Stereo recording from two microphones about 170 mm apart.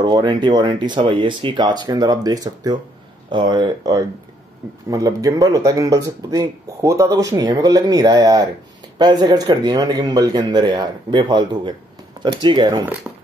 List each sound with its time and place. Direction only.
0.0 s speech: 25° right (ahead or behind)